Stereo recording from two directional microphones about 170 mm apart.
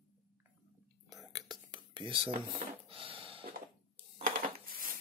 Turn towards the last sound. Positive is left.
turn(degrees=-55)  # may be behind; listen again after turning